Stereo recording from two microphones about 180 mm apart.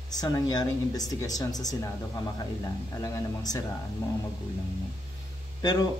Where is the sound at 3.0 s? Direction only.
20° left (ahead or behind).